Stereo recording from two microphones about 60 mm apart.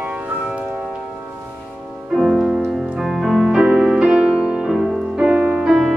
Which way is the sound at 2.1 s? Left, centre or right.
Centre.